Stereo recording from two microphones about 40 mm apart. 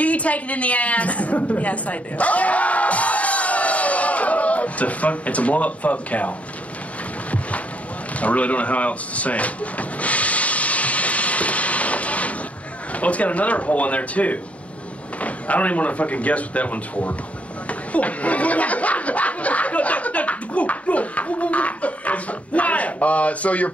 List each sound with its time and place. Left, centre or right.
0.0 s a woman's voice: left
8.2 s vehicle: left
12.9 s speech: left
17.6 s a sound: left